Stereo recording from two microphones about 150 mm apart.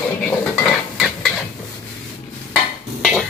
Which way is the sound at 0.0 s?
10° left (ahead or behind).